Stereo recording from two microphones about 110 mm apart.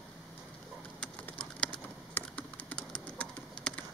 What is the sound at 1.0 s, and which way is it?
Typing, 10° left (ahead or behind).